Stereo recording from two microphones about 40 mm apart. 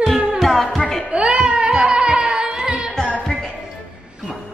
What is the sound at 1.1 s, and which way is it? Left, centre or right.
Music, right.